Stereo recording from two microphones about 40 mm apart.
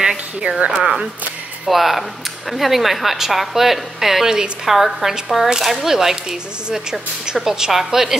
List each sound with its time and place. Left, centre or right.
0.4 s speech: right
1.7 s a woman's voice: centre